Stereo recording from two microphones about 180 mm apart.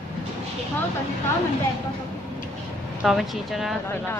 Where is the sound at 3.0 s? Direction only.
Centre (ahead or behind).